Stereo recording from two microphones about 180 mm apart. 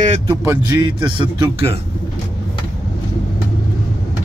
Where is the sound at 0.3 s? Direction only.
20° right (ahead or behind).